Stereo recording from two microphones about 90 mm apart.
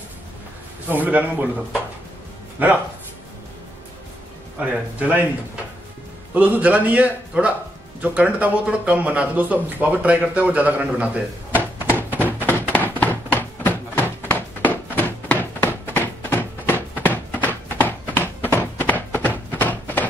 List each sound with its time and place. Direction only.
0.8 s a man's voice: 20° right (ahead or behind)
2.6 s speech: 20° right (ahead or behind)
4.6 s speech: 20° right (ahead or behind)
6.3 s speech: 20° right (ahead or behind)
10.9 s drawer open or close: 15° right (ahead or behind)
12.7 s a sound: 20° left (ahead or behind)